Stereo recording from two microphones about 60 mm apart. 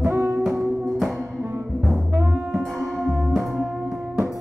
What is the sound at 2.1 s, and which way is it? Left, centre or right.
Music, right.